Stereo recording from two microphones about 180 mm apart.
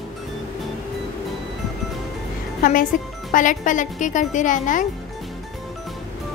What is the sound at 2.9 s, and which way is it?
Speech, 45° left (ahead or behind).